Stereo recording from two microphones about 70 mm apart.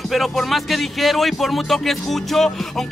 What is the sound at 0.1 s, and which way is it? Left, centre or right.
Speech, centre.